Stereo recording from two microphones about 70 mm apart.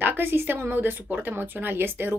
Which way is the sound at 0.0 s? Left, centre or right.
Right.